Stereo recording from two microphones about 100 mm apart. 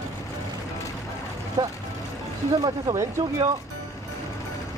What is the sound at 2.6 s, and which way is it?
Speech, 35° right (ahead or behind).